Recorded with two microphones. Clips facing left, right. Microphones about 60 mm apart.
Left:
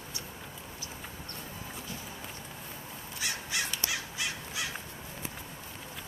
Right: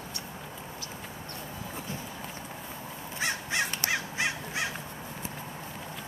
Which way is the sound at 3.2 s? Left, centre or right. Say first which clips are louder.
Right 5 dB; right.